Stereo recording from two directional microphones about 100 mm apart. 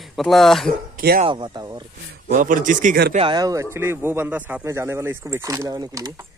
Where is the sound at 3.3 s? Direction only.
35° right (ahead or behind).